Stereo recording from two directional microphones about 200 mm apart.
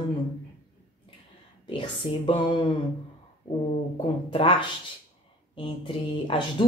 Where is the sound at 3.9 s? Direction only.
25° left (ahead or behind).